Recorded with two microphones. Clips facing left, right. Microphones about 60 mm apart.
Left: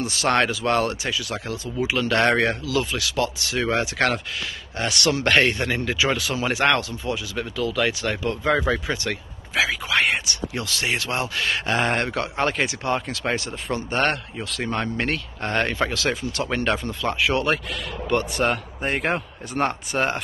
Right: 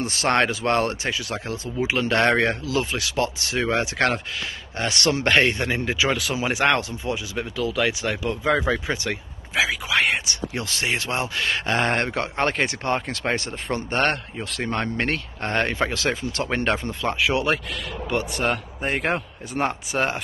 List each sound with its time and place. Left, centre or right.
0.0 s speech: right
6.0 s speech: centre
6.3 s speech: centre
7.8 s speech: centre
8.8 s speech: right
9.6 s speech: centre
10.2 s speech: right
11.6 s speech: left
12.0 s speech: right
15.0 s speech: right
17.3 s speech: centre